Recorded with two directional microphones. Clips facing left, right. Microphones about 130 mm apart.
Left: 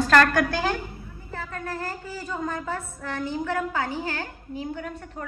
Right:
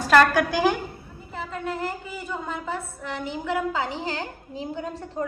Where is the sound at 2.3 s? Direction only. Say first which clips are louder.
Left 1 dB; 15° right (ahead or behind).